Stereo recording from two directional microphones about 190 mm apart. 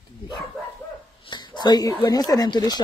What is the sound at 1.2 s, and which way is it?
Speech, 25° left (ahead or behind).